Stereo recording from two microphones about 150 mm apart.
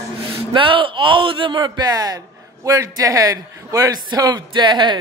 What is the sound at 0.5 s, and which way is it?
A man's voice, 35° right (ahead or behind).